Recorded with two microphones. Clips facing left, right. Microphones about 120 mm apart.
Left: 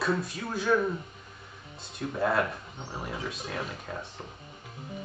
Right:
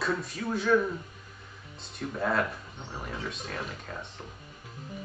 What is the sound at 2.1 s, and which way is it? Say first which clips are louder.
A man's voice: left 2 dB; 5° left (ahead or behind).